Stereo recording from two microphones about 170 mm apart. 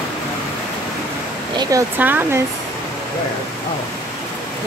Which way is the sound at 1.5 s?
20° right (ahead or behind).